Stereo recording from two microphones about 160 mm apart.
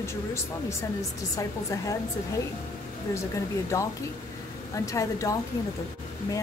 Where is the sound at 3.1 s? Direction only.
20° left (ahead or behind).